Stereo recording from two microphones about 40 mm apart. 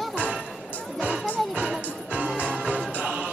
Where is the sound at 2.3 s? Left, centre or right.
Right.